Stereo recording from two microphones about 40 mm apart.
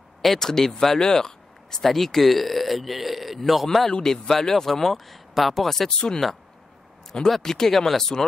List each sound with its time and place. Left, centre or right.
0.2 s speech: centre
5.9 s speech: centre
7.1 s speech: centre